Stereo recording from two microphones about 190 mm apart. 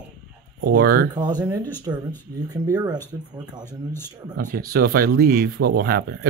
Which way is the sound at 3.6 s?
10° left (ahead or behind).